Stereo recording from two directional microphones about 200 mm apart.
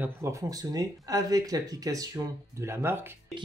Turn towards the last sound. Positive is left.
turn(degrees=-10)  # may be behind; listen again after turning